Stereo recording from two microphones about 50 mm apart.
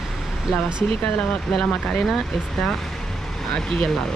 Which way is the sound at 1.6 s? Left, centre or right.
Left.